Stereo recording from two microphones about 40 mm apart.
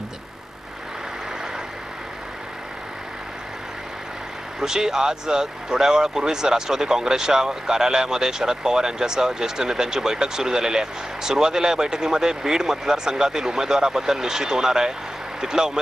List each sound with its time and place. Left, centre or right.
4.6 s speech: centre